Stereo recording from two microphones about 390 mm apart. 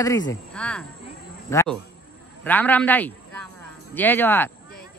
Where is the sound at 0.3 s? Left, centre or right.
Centre.